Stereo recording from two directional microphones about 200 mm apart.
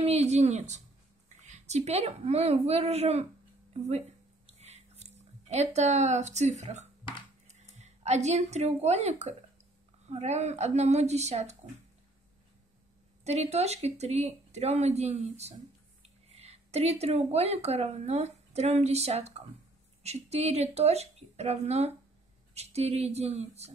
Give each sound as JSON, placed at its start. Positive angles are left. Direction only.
{"t": 0.0, "sound": "speech", "side_deg": -30}
{"t": 4.5, "sound": "a sound", "side_deg": -35}
{"t": 7.4, "sound": "speech", "side_deg": -35}
{"t": 13.2, "sound": "speech", "side_deg": -35}